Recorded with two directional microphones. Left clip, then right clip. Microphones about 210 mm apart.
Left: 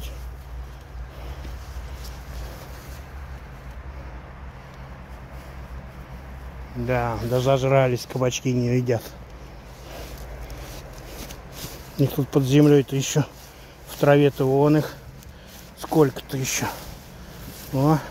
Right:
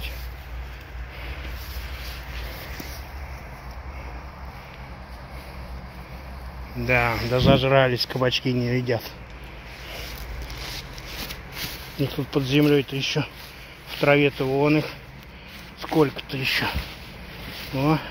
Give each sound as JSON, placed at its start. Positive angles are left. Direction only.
{"t": 6.9, "sound": "speech", "side_deg": 5}
{"t": 8.6, "sound": "speech", "side_deg": 25}
{"t": 12.0, "sound": "speech", "side_deg": 35}
{"t": 17.7, "sound": "speech", "side_deg": 20}